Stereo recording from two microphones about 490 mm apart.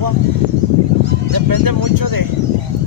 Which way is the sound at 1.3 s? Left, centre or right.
Right.